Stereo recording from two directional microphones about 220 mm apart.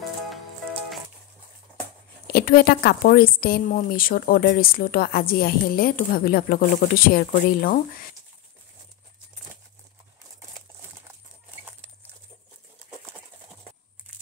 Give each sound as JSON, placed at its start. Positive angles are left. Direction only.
{"t": 2.2, "sound": "a woman's voice", "side_deg": 45}